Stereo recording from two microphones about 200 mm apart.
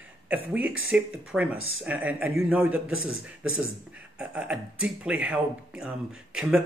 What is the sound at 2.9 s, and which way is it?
Speech, 90° right.